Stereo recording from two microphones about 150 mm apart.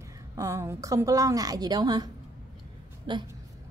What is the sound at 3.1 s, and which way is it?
Speech, 30° right (ahead or behind).